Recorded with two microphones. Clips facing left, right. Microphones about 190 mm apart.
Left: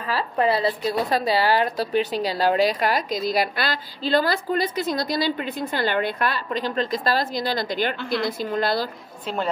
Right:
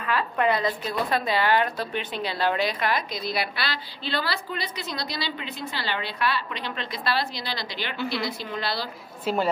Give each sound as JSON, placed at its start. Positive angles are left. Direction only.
{"t": 0.0, "sound": "a woman's voice", "side_deg": 35}
{"t": 8.0, "sound": "a woman's voice", "side_deg": 0}
{"t": 8.3, "sound": "a woman's voice", "side_deg": 45}
{"t": 9.2, "sound": "a woman's voice", "side_deg": 0}